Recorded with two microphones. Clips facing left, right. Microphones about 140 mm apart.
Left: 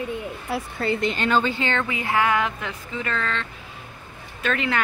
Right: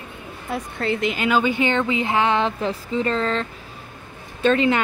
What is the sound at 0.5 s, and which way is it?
A woman's voice, centre (ahead or behind).